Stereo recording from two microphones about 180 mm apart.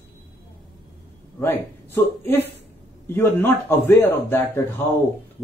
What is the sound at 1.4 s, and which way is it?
Speech, 15° left (ahead or behind).